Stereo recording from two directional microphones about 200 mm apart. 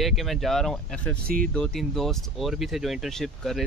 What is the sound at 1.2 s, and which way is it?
Speech, 45° right (ahead or behind).